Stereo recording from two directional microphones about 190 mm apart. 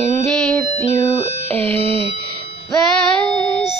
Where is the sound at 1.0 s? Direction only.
Centre (ahead or behind).